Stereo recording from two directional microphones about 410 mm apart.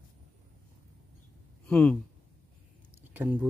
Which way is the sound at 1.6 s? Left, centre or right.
Centre.